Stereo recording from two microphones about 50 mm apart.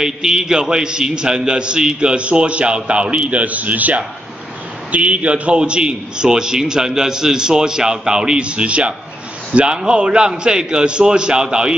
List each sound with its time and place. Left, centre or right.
0.0 s a man's voice: centre